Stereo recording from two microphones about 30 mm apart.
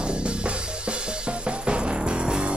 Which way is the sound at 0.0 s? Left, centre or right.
Right.